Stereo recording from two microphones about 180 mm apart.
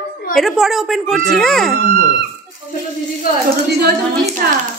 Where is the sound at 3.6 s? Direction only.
65° right (ahead or behind).